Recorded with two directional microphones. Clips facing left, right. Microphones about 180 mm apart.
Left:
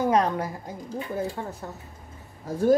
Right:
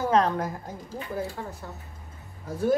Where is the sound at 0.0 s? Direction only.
10° left (ahead or behind).